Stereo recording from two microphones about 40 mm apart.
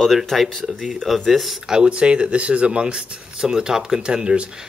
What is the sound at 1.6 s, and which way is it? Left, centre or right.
Speech, centre.